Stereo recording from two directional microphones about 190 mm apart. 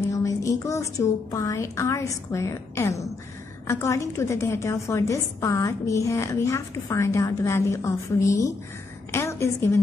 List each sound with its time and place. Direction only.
0.0 s a woman's voice: 15° left (ahead or behind)